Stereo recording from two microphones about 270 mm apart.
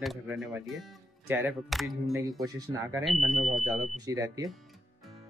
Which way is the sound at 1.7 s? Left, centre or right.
Centre.